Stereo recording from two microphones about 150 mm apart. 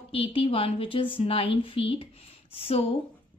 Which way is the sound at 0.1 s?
40° left (ahead or behind).